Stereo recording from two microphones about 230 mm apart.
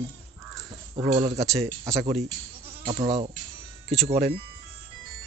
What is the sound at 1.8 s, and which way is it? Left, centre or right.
Speech, centre.